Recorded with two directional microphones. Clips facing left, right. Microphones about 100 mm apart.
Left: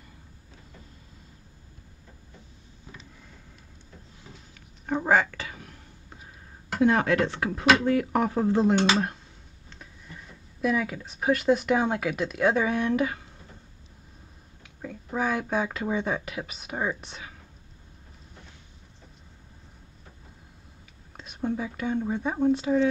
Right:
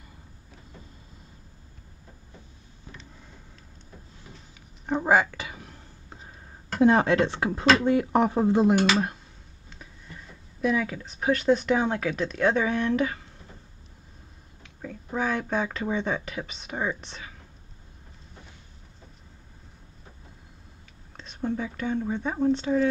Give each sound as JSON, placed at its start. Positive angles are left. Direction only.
{"t": 4.8, "sound": "a sound", "side_deg": -15}
{"t": 6.8, "sound": "speech", "side_deg": -30}
{"t": 8.7, "sound": "speech", "side_deg": 25}
{"t": 9.7, "sound": "speech", "side_deg": 0}
{"t": 14.6, "sound": "speech", "side_deg": 5}
{"t": 21.2, "sound": "speech", "side_deg": 5}